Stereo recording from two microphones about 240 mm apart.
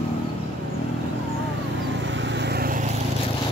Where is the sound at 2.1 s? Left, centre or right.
Right.